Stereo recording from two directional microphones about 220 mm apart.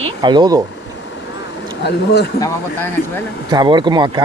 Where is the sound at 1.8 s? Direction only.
50° left (ahead or behind).